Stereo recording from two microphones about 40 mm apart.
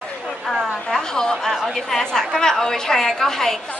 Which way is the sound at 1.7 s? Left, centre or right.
Centre.